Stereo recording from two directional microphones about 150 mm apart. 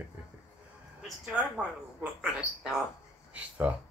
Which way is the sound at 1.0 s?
5° right (ahead or behind).